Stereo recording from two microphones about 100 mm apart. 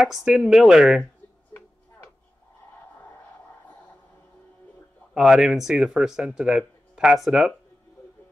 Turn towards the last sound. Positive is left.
turn(degrees=-5)  # may be behind; listen again after turning